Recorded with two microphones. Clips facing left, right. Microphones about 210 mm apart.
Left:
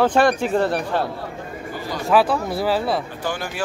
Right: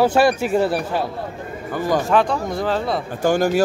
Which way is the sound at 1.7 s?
50° right (ahead or behind).